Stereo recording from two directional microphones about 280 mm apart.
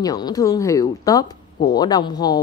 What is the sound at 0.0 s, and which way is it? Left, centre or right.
Speech, centre.